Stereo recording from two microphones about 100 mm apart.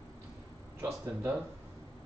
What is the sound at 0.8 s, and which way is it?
Speech, 30° right (ahead or behind).